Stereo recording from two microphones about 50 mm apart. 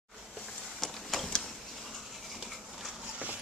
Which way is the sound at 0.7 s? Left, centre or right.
Centre.